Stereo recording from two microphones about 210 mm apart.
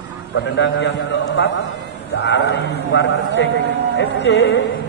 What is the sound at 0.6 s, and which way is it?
A man's voice, 60° left (ahead or behind).